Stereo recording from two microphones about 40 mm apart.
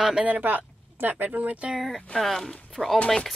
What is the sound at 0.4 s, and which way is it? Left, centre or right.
Speech, right.